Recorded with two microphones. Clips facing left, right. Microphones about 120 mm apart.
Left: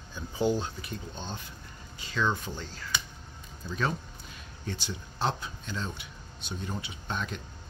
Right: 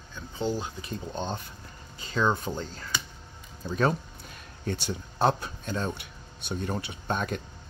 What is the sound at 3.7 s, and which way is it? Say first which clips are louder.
Speech: right 6 dB; 45° right (ahead or behind).